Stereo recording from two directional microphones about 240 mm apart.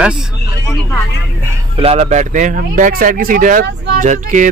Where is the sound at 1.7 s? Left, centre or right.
Right.